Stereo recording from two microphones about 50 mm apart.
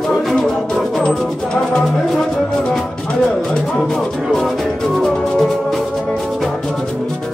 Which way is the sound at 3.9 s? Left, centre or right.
Centre.